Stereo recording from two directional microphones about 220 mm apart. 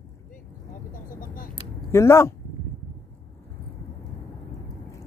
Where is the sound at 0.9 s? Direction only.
40° left (ahead or behind).